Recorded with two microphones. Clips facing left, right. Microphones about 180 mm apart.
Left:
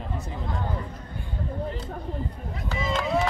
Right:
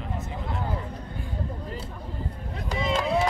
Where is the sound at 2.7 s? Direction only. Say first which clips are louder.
Right 2 dB; 15° right (ahead or behind).